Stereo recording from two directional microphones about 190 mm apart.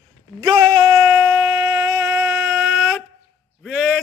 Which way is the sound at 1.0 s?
10° right (ahead or behind).